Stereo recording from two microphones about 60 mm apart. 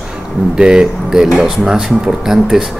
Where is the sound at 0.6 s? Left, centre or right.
Centre.